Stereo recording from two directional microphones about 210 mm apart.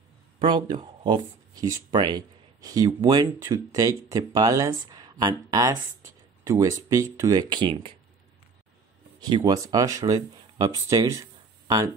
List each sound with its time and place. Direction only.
0.4 s speech: 20° right (ahead or behind)
9.2 s speech: 20° right (ahead or behind)